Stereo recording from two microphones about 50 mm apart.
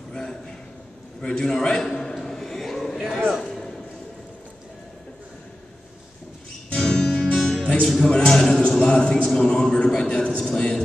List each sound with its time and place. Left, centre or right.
0.1 s a sound: centre
6.7 s music: centre
8.1 s a man's voice: centre
10.3 s a man's voice: centre